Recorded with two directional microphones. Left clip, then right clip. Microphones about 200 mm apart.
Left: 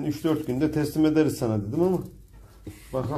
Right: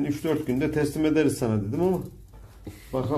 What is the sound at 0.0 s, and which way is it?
Speech, 15° left (ahead or behind).